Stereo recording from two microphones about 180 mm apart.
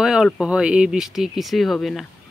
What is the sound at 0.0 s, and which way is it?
Speech, 5° right (ahead or behind).